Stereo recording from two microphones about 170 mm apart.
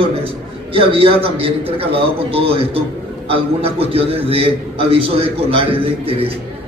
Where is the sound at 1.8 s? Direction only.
35° right (ahead or behind).